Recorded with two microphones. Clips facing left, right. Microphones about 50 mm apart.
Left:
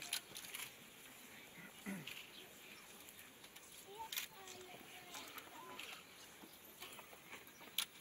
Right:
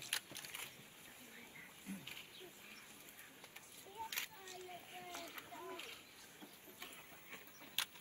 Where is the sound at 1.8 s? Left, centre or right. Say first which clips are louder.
Left 3 dB; left.